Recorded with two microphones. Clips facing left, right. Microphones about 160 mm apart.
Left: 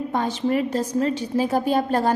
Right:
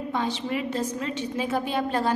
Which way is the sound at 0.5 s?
45° left (ahead or behind).